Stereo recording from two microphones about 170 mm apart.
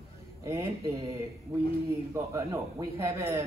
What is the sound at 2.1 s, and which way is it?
A man's voice, 15° right (ahead or behind).